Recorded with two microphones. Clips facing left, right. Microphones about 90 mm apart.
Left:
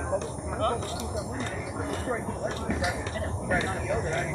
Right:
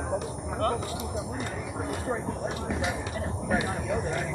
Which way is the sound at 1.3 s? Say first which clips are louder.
Even; 10° right (ahead or behind).